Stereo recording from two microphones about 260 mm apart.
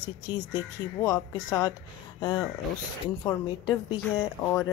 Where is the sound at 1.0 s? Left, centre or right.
Centre.